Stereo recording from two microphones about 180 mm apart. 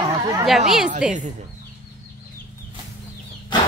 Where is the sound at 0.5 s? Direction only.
Centre (ahead or behind).